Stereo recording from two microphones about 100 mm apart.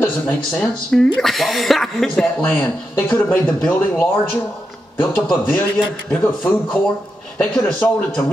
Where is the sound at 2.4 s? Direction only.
20° left (ahead or behind).